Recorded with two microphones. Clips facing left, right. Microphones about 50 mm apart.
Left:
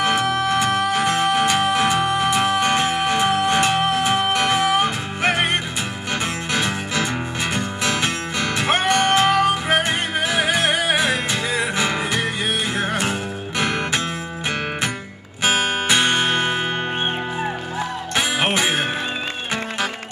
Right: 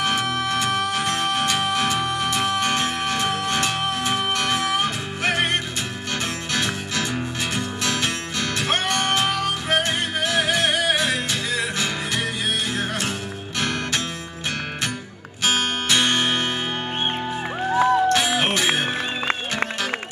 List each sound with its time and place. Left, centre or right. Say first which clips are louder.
0.0 s music: left 4 dB; centre
15.4 s music: left 3 dB; centre
18.2 s music: left 1 dB; centre